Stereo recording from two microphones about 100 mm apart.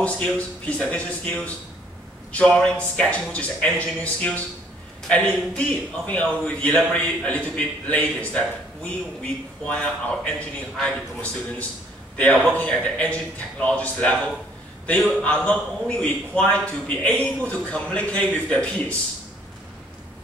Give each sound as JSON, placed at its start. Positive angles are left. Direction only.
{"t": 0.0, "sound": "a man's voice", "side_deg": 10}